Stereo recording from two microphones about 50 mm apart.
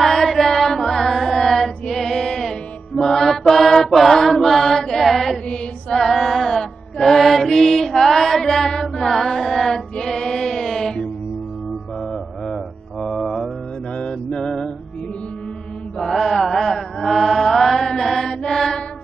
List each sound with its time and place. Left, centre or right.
0.0 s carnatic music: centre
3.0 s mantra: centre
9.9 s music: centre
13.2 s mantra: centre
13.9 s music: centre
16.0 s chant: centre
18.4 s music: centre